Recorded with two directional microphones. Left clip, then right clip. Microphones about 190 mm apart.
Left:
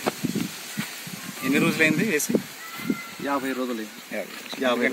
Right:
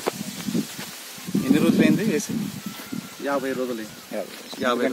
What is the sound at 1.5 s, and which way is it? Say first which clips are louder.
Speech: right 1 dB; 40° right (ahead or behind).